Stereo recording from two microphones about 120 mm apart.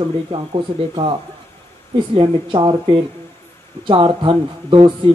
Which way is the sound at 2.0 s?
40° right (ahead or behind).